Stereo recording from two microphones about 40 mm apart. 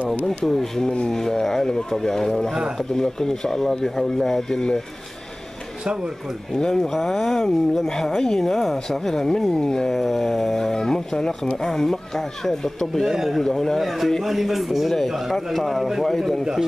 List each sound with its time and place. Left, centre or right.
0.5 s speech: centre
6.5 s speech: centre
6.9 s a man's voice: centre
9.9 s speech: centre
13.1 s a man's voice: centre
13.4 s a man's voice: centre